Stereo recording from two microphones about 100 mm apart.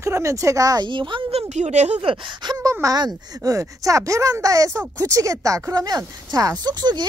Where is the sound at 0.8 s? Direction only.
55° right (ahead or behind).